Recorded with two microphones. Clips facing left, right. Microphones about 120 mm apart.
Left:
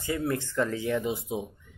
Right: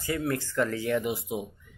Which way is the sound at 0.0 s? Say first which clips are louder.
Even; 20° left (ahead or behind).